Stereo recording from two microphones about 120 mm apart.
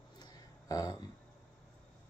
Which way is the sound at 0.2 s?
30° left (ahead or behind).